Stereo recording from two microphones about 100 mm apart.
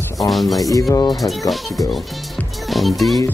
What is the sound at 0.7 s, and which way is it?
Speech, 35° left (ahead or behind).